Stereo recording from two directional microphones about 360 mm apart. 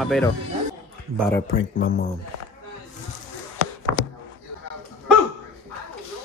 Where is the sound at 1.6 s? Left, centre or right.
Left.